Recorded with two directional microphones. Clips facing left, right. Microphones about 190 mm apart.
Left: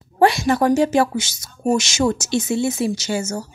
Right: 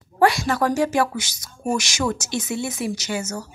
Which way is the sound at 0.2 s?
25° left (ahead or behind).